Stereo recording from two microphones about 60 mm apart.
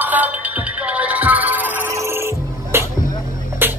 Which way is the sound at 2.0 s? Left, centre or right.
Right.